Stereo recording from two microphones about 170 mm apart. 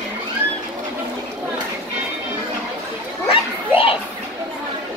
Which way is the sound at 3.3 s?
30° left (ahead or behind).